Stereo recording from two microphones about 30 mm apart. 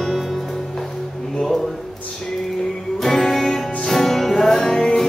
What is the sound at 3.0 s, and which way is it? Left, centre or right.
Music, centre.